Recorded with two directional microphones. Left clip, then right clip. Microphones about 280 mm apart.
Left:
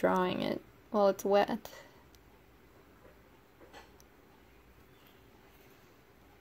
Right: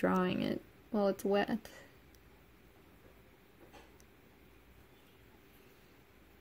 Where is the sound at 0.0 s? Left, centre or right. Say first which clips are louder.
Left 3 dB; right.